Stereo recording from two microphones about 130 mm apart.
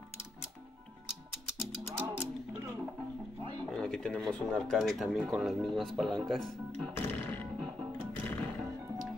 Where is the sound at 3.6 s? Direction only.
5° left (ahead or behind).